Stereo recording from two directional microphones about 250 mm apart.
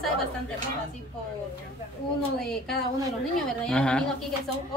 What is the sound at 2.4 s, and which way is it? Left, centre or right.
A woman's voice, centre.